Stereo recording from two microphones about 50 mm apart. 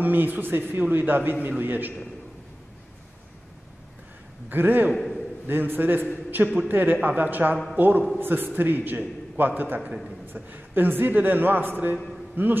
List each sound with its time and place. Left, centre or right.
0.0 s a man's voice: right
4.5 s a man's voice: right
4.9 s a man's voice: centre
5.5 s a man's voice: right